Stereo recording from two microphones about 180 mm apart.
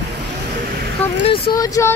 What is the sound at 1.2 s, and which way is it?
Speech, 30° left (ahead or behind).